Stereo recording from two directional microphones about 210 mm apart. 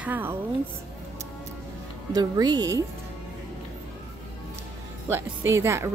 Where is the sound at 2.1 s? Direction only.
20° right (ahead or behind).